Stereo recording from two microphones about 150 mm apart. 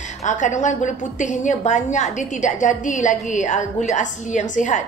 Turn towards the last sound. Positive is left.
turn(degrees=55)  # may be behind; listen again after turning